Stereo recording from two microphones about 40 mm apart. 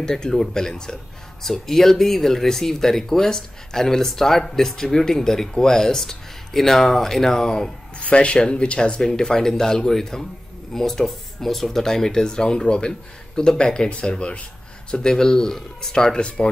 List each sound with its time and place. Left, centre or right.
0.0 s speech: centre
8.1 s speech: left